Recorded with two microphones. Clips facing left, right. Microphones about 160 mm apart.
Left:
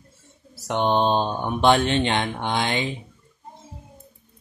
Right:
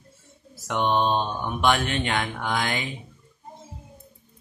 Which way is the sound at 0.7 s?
30° left (ahead or behind).